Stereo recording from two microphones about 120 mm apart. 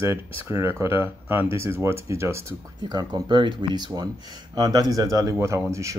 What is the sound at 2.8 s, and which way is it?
Speech, 35° right (ahead or behind).